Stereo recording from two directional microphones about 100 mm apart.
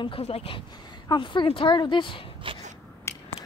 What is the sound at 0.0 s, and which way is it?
Speech, 70° left (ahead or behind).